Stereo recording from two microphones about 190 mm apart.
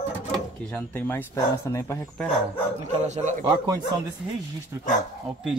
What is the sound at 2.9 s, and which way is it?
Speech, 35° right (ahead or behind).